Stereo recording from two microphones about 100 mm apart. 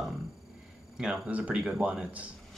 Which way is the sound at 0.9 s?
10° right (ahead or behind).